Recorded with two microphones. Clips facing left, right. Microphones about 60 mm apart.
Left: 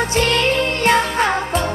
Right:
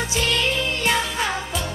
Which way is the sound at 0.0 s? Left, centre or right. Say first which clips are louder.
Left 6 dB; left.